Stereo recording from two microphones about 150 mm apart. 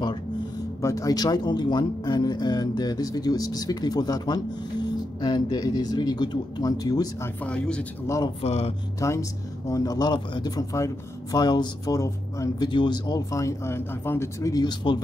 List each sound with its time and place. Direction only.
0.8 s speech: 25° left (ahead or behind)
7.4 s speech: 5° left (ahead or behind)
8.4 s speech: 40° left (ahead or behind)
9.0 s speech: 20° left (ahead or behind)